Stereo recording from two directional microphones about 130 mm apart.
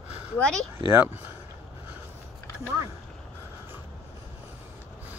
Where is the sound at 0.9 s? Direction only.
15° right (ahead or behind).